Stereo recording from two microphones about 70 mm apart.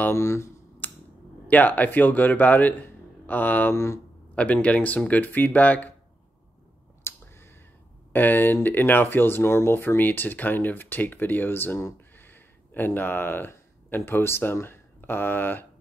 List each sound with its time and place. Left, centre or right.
0.1 s speech: left
0.8 s a sound: left
1.5 s speech: left
3.7 s speech: left
4.4 s speech: centre
7.0 s finger snapping: left
8.1 s speech: left